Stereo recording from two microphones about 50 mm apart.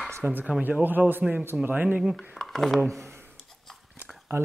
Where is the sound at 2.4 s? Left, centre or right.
Centre.